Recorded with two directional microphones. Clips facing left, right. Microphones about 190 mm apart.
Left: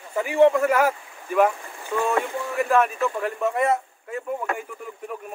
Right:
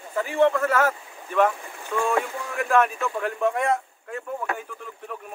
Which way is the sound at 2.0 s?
5° left (ahead or behind).